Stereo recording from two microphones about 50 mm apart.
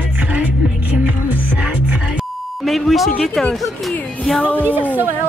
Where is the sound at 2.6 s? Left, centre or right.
Centre.